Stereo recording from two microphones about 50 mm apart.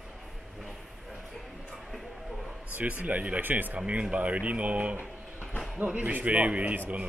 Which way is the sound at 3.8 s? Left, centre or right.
Right.